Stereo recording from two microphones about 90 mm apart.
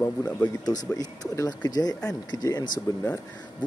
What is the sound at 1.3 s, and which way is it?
Speech, 45° left (ahead or behind).